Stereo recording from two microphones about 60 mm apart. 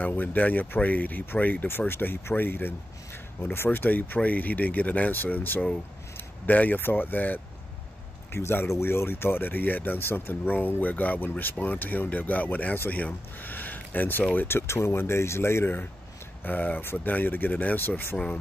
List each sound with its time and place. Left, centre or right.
0.0 s speech: left
8.3 s speech: left
14.7 s speech: left